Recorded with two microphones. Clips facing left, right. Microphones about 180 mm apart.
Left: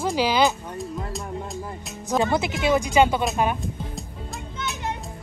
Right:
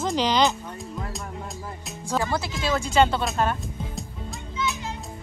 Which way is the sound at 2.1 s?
20° left (ahead or behind).